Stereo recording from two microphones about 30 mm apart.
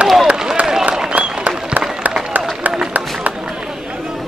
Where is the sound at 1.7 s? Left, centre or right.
Right.